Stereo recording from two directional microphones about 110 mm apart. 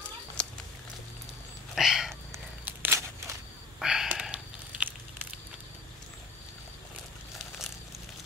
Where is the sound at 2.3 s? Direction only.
20° right (ahead or behind).